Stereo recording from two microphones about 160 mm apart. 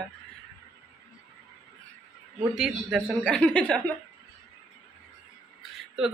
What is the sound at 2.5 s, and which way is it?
Speech, centre (ahead or behind).